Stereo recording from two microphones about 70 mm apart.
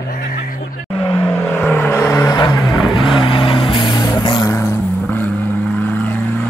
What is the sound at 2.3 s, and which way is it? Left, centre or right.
Vehicle, left.